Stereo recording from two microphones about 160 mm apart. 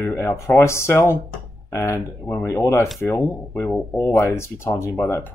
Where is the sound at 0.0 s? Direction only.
15° left (ahead or behind).